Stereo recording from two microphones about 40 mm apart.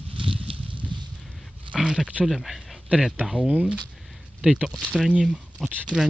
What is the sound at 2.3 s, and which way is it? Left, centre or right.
Speech, centre.